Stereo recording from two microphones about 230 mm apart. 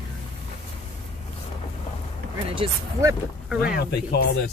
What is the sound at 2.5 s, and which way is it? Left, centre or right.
Speech, centre.